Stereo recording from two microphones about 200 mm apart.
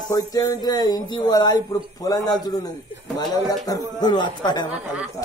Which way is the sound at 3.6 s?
20° left (ahead or behind).